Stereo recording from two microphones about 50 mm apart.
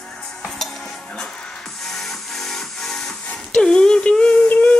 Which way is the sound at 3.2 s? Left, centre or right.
Centre.